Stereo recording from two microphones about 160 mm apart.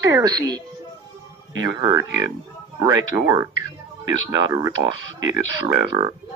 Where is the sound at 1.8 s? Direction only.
20° right (ahead or behind).